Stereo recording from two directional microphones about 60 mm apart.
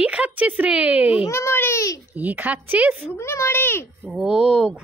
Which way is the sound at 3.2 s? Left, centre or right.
Left.